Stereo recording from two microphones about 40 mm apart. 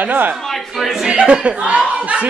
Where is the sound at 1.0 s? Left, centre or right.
Right.